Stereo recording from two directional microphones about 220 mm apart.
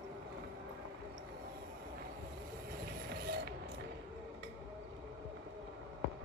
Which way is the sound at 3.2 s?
45° right (ahead or behind).